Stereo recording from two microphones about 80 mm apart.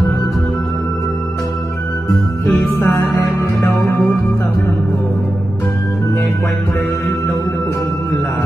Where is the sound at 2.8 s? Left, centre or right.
Left.